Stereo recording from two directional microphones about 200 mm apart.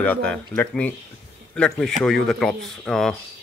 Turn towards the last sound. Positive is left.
turn(degrees=0)  # may be behind; listen again after turning